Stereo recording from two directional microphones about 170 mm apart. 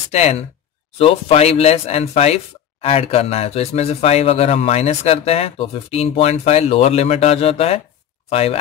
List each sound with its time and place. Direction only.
0.1 s speech: 40° left (ahead or behind)